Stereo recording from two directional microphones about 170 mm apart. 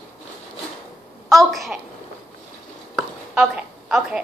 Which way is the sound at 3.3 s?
5° right (ahead or behind).